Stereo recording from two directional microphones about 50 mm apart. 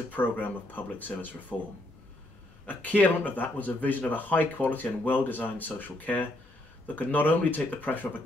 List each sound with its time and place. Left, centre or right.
0.1 s speech: left
1.5 s speech: centre
2.6 s speech: left